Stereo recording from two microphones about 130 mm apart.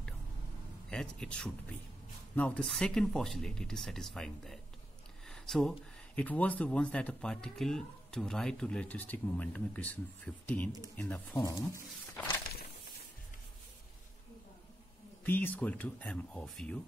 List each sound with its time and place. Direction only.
0.8 s speech: 5° left (ahead or behind)
15.2 s speech: 15° left (ahead or behind)